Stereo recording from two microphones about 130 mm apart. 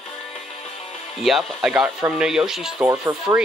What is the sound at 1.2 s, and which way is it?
Speech, centre (ahead or behind).